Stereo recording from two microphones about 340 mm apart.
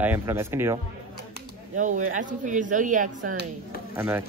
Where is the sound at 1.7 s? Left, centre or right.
Right.